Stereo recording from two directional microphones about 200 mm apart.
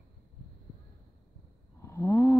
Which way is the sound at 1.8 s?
15° left (ahead or behind).